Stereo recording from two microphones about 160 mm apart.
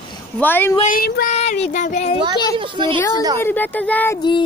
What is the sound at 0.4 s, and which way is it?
Speech, 10° left (ahead or behind).